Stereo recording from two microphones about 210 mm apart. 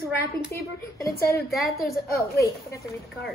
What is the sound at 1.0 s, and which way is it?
A woman's voice, 15° left (ahead or behind).